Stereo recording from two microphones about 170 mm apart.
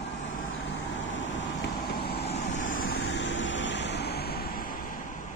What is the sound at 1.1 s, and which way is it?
Vehicle, 90° left.